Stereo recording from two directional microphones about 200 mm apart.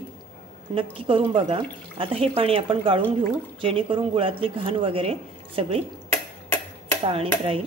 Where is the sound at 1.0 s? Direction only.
25° right (ahead or behind).